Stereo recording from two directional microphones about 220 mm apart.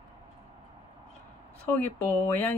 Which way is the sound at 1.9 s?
10° left (ahead or behind).